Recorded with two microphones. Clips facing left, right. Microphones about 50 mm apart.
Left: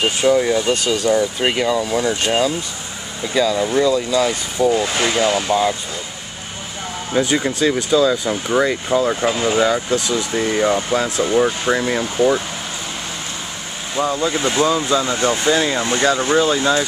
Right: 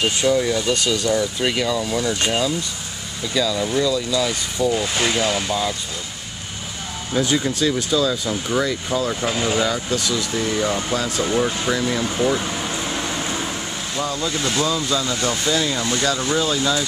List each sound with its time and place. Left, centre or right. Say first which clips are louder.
0.0 s speech: left 3 dB; centre
3.3 s speech: left 4 dB; left
7.1 s speech: left 2 dB; left
10.9 s speech: left 4 dB; centre
11.7 s speech: left 3 dB; left
12.0 s speech: left 4 dB; centre
13.9 s speech: left 6 dB; left